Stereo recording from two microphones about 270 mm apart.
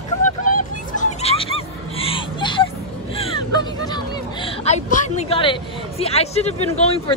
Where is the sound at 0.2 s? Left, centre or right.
Left.